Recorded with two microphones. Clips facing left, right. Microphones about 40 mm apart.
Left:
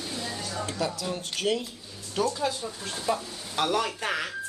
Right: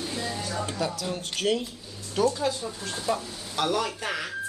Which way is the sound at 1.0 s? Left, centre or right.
Centre.